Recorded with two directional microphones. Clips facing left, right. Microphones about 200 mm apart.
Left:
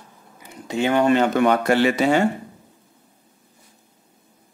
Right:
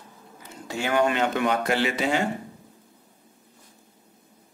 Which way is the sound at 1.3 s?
50° left (ahead or behind).